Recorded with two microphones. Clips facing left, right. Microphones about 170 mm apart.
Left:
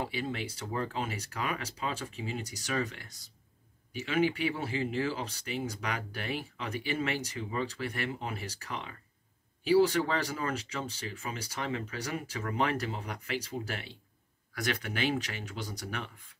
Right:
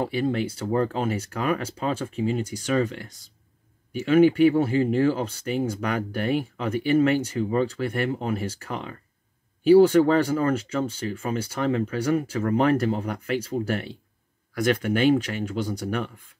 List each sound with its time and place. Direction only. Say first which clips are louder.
0.0 s speech: right 10 dB; 50° right (ahead or behind)
4.0 s speech: right 12 dB; 50° right (ahead or behind)